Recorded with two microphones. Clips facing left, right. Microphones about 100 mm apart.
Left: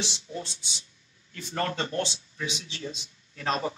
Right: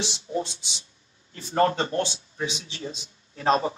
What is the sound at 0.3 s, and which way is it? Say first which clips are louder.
A man's voice: right 8 dB; 35° right (ahead or behind).